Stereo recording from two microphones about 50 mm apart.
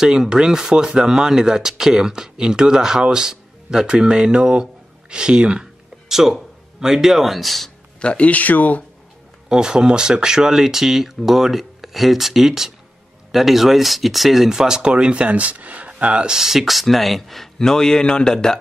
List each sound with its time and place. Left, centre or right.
0.0 s speech: centre
6.0 s speech: centre
8.0 s speech: left
9.5 s speech: centre
16.3 s a man's voice: centre